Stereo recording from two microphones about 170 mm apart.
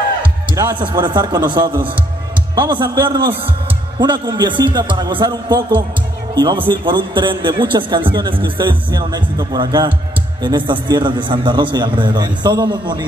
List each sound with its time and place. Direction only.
0.2 s music: 30° right (ahead or behind)
0.7 s a man's voice: 25° right (ahead or behind)